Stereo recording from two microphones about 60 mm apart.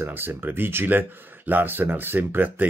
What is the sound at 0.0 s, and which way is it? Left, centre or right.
Speech, right.